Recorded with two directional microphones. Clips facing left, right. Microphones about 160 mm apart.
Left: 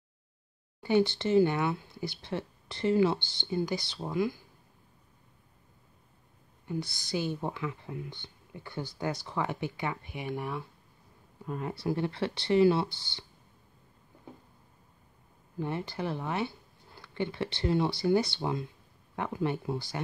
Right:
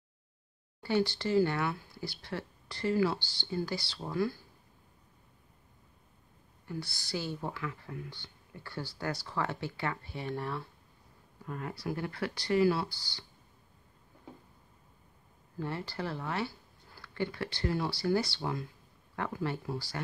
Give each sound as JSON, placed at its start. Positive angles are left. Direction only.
{"t": 0.8, "sound": "speech", "side_deg": 20}
{"t": 6.7, "sound": "speech", "side_deg": 20}
{"t": 15.6, "sound": "speech", "side_deg": 20}